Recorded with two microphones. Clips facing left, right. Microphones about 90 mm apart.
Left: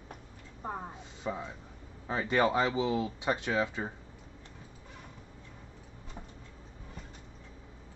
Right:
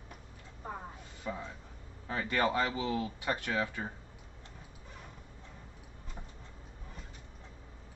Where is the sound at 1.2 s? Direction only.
20° left (ahead or behind).